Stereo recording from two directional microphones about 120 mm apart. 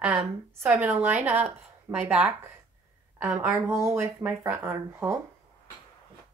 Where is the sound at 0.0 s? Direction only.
15° right (ahead or behind).